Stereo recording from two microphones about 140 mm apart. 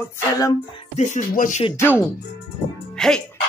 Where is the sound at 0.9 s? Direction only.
60° left (ahead or behind).